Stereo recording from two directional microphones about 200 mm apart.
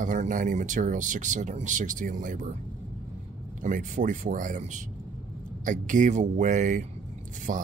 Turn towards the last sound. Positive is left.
turn(degrees=-40)  # may be behind; listen again after turning